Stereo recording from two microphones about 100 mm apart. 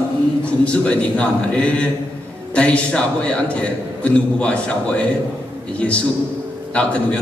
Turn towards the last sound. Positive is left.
turn(degrees=10)  # may be behind; listen again after turning